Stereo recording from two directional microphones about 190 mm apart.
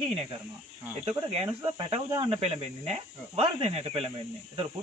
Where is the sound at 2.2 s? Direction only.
35° right (ahead or behind).